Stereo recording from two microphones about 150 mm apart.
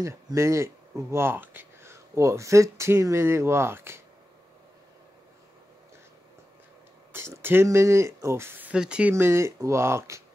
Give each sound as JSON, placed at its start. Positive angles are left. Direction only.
{"t": 0.0, "sound": "speech", "side_deg": -20}
{"t": 7.1, "sound": "speech", "side_deg": -15}
{"t": 9.1, "sound": "speech", "side_deg": -20}